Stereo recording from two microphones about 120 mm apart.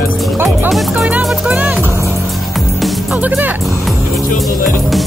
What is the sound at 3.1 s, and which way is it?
Music, 15° right (ahead or behind).